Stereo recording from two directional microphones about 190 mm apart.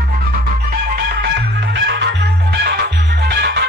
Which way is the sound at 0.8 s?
55° right (ahead or behind).